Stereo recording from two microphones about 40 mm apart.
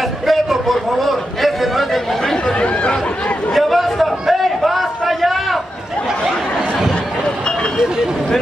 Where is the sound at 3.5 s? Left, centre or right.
Centre.